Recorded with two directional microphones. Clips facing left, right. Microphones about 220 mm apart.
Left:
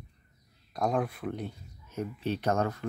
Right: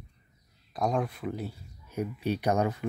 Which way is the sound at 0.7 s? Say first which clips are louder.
Even; centre (ahead or behind).